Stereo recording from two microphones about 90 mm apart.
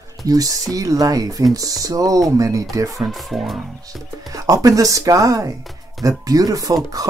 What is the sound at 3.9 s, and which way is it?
Speech, 40° right (ahead or behind).